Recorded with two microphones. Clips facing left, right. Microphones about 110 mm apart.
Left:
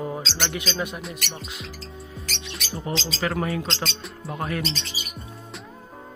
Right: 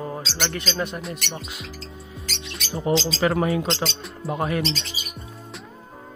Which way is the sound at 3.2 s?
25° right (ahead or behind).